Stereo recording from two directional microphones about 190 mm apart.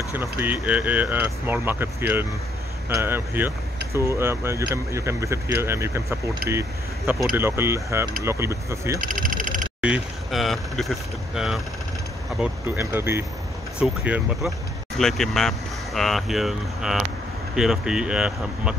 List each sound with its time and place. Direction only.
0.1 s speech: 10° right (ahead or behind)
7.3 s speech: 10° right (ahead or behind)
9.0 s a sound: 45° right (ahead or behind)
9.8 s speech: 5° right (ahead or behind)